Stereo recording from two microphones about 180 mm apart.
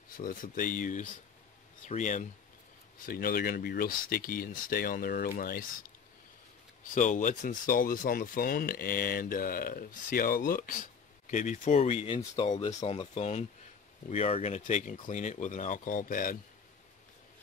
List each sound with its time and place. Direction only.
0.1 s speech: 50° left (ahead or behind)
3.1 s speech: 55° left (ahead or behind)
6.8 s speech: 45° left (ahead or behind)